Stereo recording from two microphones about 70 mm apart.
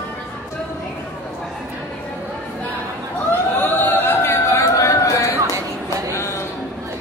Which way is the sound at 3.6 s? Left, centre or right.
Left.